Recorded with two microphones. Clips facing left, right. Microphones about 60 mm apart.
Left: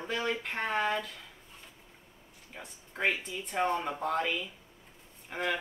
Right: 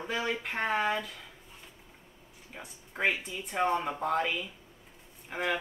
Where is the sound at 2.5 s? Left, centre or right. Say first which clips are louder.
Right 2 dB; centre.